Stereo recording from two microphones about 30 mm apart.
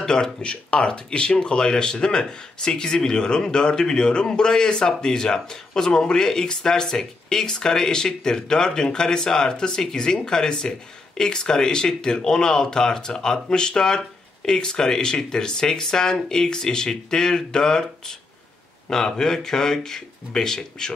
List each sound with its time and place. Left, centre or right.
0.0 s speech: left
0.4 s a man's voice: left; by 20.9 s centre